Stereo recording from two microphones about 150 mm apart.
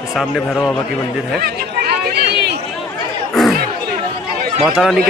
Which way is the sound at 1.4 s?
90° right.